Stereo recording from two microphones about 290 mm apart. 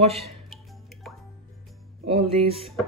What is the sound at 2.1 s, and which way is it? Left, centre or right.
Speech, centre.